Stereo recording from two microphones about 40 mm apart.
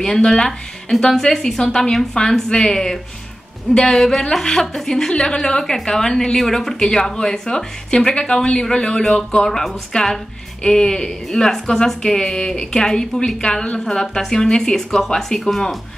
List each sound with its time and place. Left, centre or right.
0.0 s a woman's voice: centre
9.9 s a woman's voice: left; by 15.7 s centre